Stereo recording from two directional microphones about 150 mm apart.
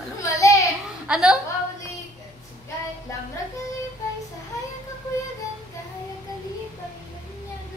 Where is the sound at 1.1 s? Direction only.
5° right (ahead or behind).